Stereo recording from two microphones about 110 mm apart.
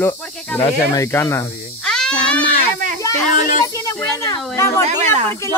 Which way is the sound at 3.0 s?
30° left (ahead or behind).